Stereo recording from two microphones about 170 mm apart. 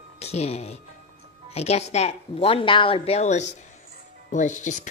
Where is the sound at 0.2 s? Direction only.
40° left (ahead or behind).